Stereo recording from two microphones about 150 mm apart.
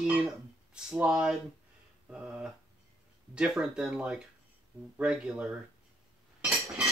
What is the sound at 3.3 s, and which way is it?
Speech, 5° right (ahead or behind).